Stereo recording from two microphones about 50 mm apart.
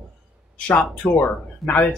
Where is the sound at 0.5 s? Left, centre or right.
Left.